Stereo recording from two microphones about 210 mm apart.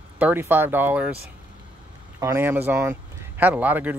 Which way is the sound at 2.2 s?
10° right (ahead or behind).